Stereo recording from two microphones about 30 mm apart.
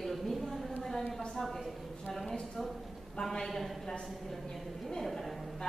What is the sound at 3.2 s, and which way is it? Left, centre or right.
Speech, left.